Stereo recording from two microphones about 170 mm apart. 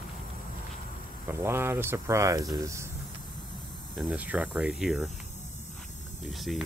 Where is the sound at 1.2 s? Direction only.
15° right (ahead or behind).